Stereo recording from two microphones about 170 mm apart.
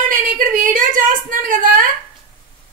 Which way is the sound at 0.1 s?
55° right (ahead or behind).